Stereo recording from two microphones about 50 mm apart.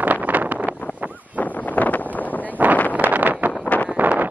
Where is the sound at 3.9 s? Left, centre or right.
Right.